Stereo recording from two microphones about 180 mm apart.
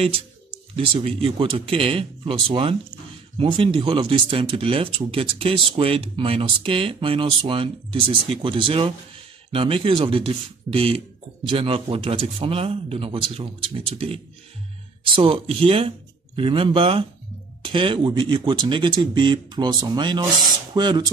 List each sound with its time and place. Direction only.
0.7 s speech: 30° right (ahead or behind)